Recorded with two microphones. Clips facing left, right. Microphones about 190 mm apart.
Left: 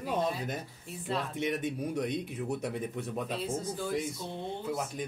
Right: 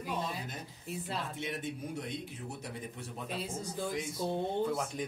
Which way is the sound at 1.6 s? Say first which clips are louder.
Left 6 dB; 60° left (ahead or behind).